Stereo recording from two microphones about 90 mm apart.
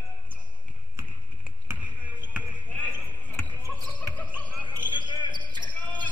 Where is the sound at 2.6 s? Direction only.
15° left (ahead or behind).